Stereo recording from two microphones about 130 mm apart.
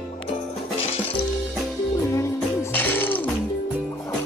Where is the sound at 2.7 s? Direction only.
15° left (ahead or behind).